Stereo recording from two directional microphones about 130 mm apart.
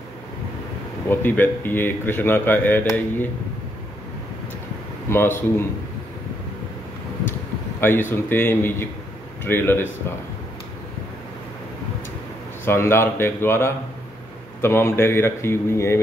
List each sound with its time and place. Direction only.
1.0 s a man's voice: 15° left (ahead or behind)
5.1 s a man's voice: 20° left (ahead or behind)
7.8 s a man's voice: 15° left (ahead or behind)
12.6 s a man's voice: 20° left (ahead or behind)